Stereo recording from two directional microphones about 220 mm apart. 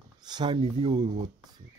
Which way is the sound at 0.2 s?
20° right (ahead or behind).